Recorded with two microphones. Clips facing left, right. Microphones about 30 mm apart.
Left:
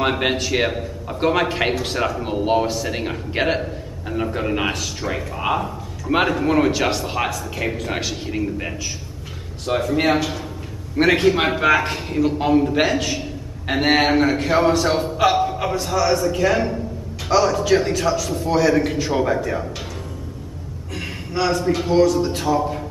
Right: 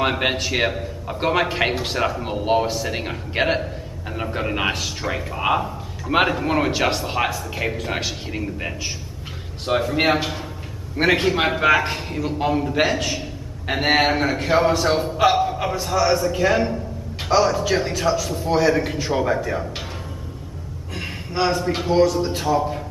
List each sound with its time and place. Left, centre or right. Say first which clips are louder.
0.0 s a man's voice: left 1 dB; centre
9.7 s a man's voice: even; centre
11.0 s a man's voice: left 2 dB; centre
20.9 s a sound: left 1 dB; centre
21.8 s a man's voice: even; centre